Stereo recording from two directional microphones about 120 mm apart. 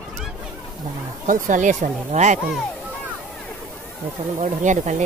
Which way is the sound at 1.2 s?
90° right.